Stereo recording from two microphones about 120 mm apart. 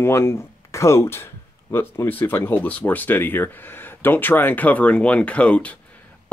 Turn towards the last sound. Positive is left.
turn(degrees=10)  # may be behind; listen again after turning